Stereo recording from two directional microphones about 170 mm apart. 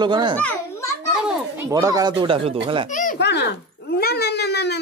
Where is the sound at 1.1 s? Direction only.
5° right (ahead or behind).